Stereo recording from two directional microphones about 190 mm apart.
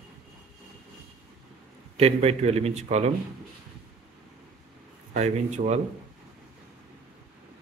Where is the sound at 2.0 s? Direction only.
35° right (ahead or behind).